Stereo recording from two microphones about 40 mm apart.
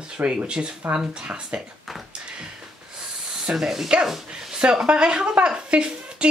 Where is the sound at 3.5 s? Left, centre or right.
Centre.